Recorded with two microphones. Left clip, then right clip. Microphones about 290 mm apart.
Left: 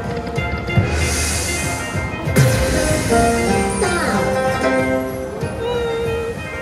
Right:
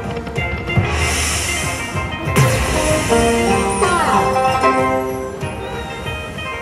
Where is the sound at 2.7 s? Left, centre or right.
Right.